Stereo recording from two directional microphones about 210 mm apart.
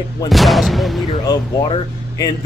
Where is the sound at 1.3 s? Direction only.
20° left (ahead or behind).